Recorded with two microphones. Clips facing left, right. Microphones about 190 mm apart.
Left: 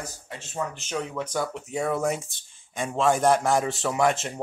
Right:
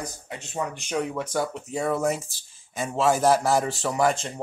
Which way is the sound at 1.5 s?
Centre (ahead or behind).